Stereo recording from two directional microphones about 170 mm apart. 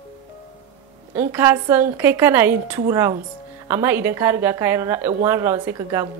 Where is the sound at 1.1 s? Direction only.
15° right (ahead or behind).